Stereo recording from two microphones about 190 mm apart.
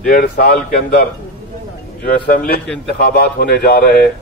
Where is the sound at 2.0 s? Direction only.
50° left (ahead or behind).